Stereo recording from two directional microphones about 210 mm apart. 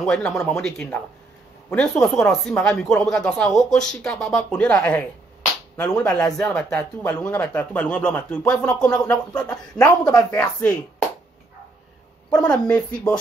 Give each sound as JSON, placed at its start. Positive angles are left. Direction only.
{"t": 0.0, "sound": "speech", "side_deg": 5}
{"t": 9.5, "sound": "speech", "side_deg": 15}
{"t": 12.4, "sound": "speech", "side_deg": 5}